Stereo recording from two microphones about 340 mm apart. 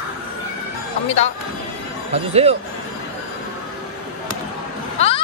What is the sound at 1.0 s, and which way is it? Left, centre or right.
Speech, centre.